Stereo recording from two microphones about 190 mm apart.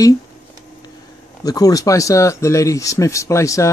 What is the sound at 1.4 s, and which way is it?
A man's voice, 20° left (ahead or behind).